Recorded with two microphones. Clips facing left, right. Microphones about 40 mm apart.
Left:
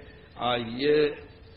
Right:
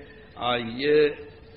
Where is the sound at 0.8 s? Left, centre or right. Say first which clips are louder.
Right 3 dB; centre.